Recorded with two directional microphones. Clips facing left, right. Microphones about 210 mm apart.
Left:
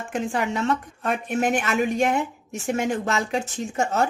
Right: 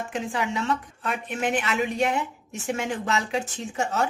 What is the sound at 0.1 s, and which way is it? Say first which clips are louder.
A woman's voice: left 5 dB; 50° left (ahead or behind).